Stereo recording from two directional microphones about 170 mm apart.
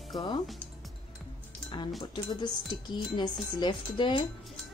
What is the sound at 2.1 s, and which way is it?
Speech, 25° left (ahead or behind).